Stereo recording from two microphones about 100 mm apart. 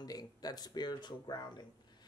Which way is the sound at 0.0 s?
40° left (ahead or behind).